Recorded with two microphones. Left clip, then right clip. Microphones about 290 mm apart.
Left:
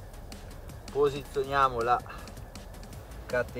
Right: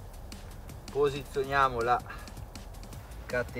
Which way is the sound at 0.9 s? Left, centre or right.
Centre.